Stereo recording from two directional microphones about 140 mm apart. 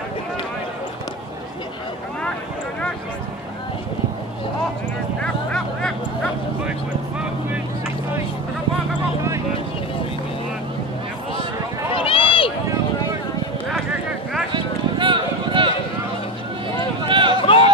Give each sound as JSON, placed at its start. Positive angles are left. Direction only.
{"t": 5.2, "sound": "vehicle", "side_deg": 5}
{"t": 11.9, "sound": "run", "side_deg": 40}
{"t": 14.5, "sound": "run", "side_deg": -35}
{"t": 17.1, "sound": "run", "side_deg": -35}
{"t": 17.4, "sound": "run", "side_deg": 40}